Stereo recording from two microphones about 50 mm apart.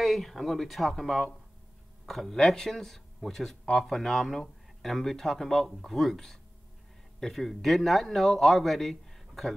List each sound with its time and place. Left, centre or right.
0.0 s speech: centre